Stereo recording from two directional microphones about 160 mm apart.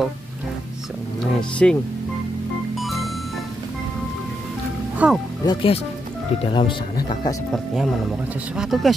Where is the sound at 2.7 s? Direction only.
Centre (ahead or behind).